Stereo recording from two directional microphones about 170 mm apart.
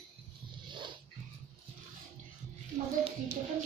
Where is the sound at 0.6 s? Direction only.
30° right (ahead or behind).